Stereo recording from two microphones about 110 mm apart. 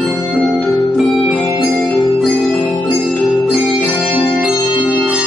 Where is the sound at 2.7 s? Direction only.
45° left (ahead or behind).